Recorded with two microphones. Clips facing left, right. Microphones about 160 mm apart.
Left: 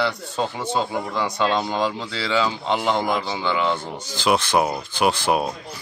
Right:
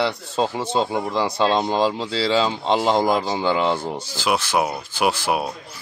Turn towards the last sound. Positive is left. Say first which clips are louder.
# left 1 dB
turn(degrees=-10)  # may be behind; listen again after turning